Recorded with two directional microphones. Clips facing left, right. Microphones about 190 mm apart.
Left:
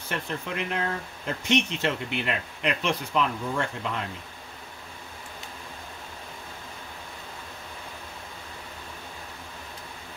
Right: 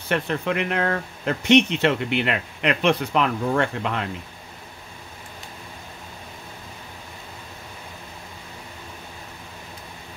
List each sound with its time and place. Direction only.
0.1 s speech: 70° right (ahead or behind)